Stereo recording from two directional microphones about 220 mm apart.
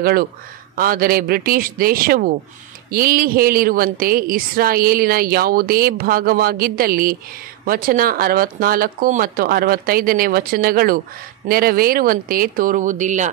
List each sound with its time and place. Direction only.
0.0 s a woman's voice: 45° right (ahead or behind)